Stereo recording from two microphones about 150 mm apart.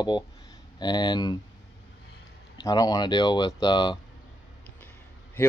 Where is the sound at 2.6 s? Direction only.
25° left (ahead or behind).